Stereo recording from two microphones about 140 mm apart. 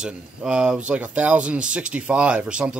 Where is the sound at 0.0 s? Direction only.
5° right (ahead or behind).